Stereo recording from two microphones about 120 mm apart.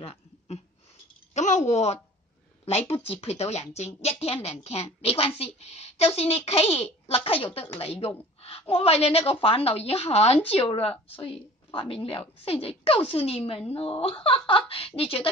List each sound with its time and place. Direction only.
0.0 s a sound: 55° left (ahead or behind)
1.3 s speech: 85° left
2.6 s a woman's voice: 60° left (ahead or behind)